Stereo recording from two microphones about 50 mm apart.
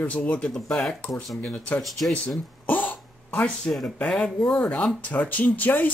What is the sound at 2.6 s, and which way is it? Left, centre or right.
Cough, left.